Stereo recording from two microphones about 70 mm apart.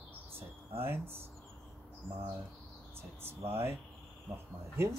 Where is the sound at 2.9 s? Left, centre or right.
Right.